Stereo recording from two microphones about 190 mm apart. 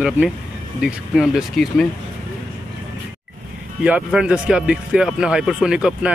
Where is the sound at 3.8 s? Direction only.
5° right (ahead or behind).